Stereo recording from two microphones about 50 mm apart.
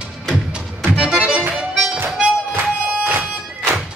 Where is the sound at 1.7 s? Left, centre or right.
Right.